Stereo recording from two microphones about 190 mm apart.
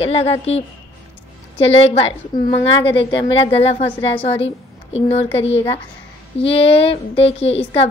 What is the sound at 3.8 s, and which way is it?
Speech, 10° left (ahead or behind).